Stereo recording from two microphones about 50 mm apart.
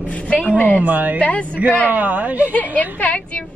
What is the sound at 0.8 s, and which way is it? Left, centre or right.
Speech, right.